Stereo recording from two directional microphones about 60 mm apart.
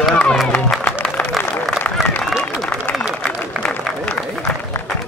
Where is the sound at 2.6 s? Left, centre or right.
Centre.